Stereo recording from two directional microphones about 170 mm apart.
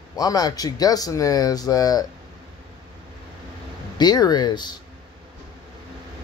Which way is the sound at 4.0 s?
25° left (ahead or behind).